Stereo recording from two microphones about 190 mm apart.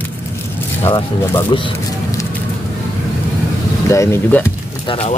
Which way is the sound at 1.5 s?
25° left (ahead or behind).